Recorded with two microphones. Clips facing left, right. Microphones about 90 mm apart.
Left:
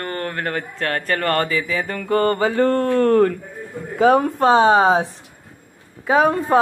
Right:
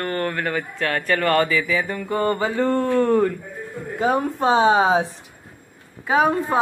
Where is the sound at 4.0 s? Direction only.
80° left; by 5.1 s 45° left (ahead or behind).